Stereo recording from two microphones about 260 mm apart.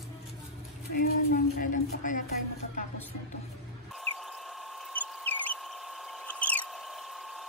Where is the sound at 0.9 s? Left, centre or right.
Left.